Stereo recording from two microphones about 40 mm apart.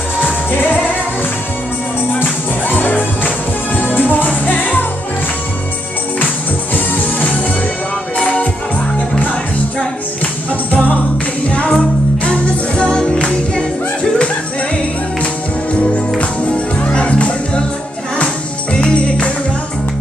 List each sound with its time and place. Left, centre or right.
0.2 s music: left
2.1 s music: left
6.7 s music: left
8.2 s music: left
10.7 s music: left
16.2 s music: left